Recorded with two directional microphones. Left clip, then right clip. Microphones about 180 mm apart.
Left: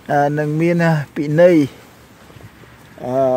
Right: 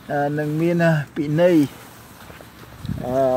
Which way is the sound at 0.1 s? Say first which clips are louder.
Left 6 dB; 55° left (ahead or behind).